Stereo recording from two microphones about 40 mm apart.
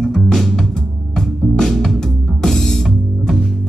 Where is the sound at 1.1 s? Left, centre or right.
Centre.